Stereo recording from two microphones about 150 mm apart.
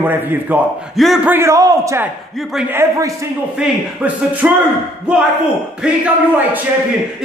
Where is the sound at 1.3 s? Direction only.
20° right (ahead or behind).